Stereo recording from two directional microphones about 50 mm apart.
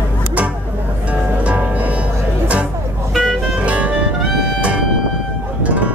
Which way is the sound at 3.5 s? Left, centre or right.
Right.